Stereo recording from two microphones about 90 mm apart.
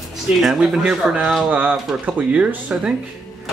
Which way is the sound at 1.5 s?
20° right (ahead or behind).